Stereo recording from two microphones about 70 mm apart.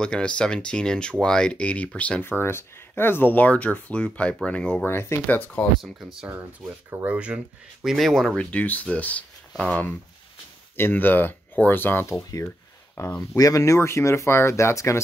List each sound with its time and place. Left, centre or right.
0.0 s speech: centre
2.2 s speech: left; by 4.8 s centre
4.8 s speech: left
5.2 s speech: left
5.8 s speech: centre
7.1 s speech: centre
7.8 s speech: centre
8.4 s speech: centre
12.1 s speech: left